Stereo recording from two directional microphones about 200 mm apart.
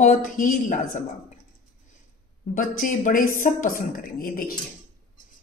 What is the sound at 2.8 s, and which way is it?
A woman's voice, 40° left (ahead or behind).